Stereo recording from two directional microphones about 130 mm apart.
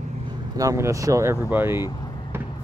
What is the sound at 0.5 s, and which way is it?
Speech, 25° right (ahead or behind).